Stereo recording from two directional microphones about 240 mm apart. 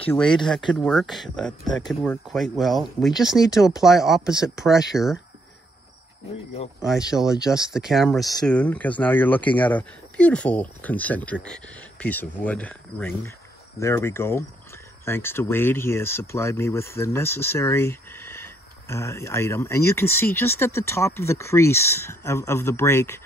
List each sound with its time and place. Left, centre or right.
0.0 s speech: centre
6.9 s speech: centre